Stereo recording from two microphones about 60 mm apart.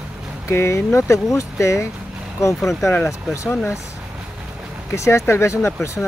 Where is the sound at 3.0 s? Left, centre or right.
Left.